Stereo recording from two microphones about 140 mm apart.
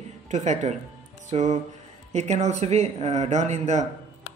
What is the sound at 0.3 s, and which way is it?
Speech, 60° right (ahead or behind).